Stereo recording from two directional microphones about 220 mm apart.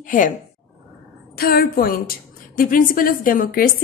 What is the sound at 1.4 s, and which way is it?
A woman's voice, 45° left (ahead or behind).